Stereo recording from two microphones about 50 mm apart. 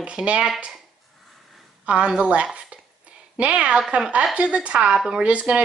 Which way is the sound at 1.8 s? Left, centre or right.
Right.